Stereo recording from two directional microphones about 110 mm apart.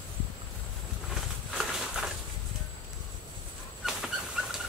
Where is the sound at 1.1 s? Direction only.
Centre (ahead or behind).